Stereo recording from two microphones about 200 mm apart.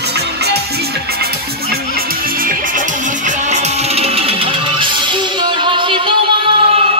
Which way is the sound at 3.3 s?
35° right (ahead or behind).